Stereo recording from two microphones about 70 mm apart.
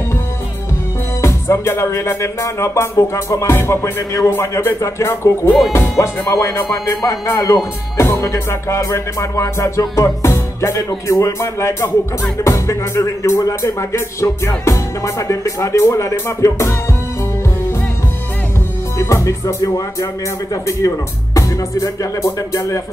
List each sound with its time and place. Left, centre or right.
1.2 s music: left
18.9 s music: left